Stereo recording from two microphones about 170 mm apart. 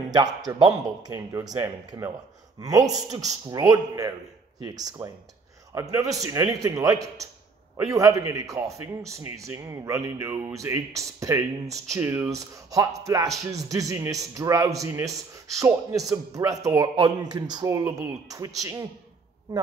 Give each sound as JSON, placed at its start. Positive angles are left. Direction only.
{"t": 0.1, "sound": "speech", "side_deg": -25}